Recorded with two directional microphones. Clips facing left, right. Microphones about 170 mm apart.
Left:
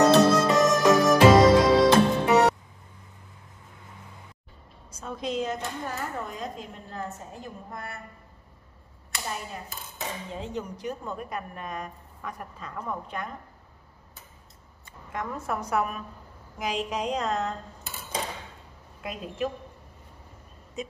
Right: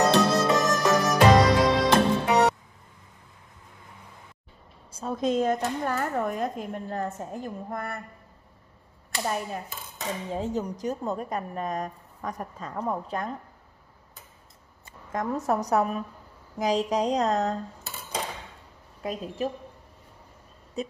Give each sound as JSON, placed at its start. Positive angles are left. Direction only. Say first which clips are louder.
{"t": 0.1, "sound": "music", "louder": "left 3 dB", "side_deg": 0}
{"t": 4.9, "sound": "speech", "louder": "right 5 dB", "side_deg": -40}
{"t": 10.3, "sound": "a woman's voice", "louder": "right 5 dB", "side_deg": -40}
{"t": 15.1, "sound": "a woman's voice", "louder": "right 5 dB", "side_deg": -40}
{"t": 19.0, "sound": "a woman's voice", "louder": "right 2 dB", "side_deg": -35}
{"t": 20.8, "sound": "a sound", "louder": "right 3 dB", "side_deg": -35}